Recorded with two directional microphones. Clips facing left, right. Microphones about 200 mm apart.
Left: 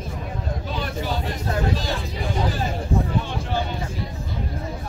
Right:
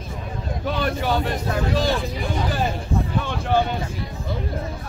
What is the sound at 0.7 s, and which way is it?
Speech, 65° right (ahead or behind).